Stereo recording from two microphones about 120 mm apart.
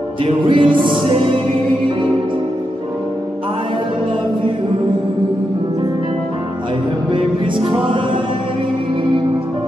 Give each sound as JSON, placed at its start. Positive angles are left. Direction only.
{"t": 0.2, "sound": "music", "side_deg": -45}
{"t": 7.1, "sound": "music", "side_deg": -45}